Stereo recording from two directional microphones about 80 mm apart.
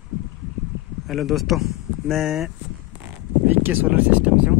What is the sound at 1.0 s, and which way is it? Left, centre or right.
Speech, centre.